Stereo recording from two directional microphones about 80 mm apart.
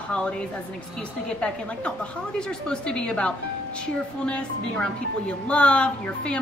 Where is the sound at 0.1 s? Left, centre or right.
Centre.